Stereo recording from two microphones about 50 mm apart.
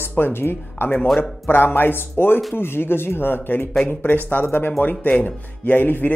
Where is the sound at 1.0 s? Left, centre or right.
Centre.